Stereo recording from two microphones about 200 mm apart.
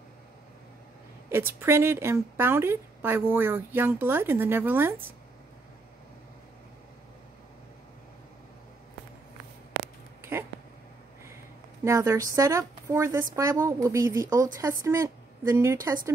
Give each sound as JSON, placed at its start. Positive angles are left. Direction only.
{"t": 1.3, "sound": "a woman's voice", "side_deg": -10}
{"t": 11.8, "sound": "a woman's voice", "side_deg": -15}